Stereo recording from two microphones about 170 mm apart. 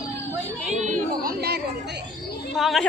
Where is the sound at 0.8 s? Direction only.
55° right (ahead or behind).